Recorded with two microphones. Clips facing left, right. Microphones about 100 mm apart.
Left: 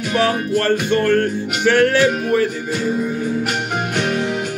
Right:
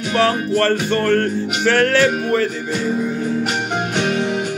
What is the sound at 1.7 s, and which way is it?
Music, 15° left (ahead or behind).